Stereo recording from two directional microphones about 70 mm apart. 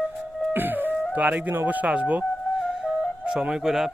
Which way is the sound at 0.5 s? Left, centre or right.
Right.